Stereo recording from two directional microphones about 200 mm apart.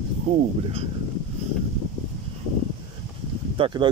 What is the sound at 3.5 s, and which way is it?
Speech, 25° right (ahead or behind).